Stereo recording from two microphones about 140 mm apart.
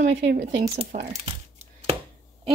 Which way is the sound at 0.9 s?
55° right (ahead or behind).